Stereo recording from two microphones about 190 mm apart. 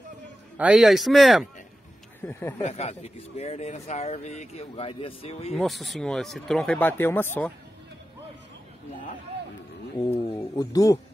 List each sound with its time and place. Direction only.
0.6 s speech: 5° right (ahead or behind)
2.6 s speech: 35° left (ahead or behind)
5.6 s speech: centre (ahead or behind)
10.1 s speech: 30° left (ahead or behind)
10.5 s speech: 20° left (ahead or behind)